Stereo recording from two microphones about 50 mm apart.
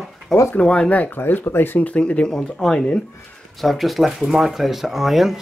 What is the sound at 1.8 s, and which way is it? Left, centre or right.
Speech, left.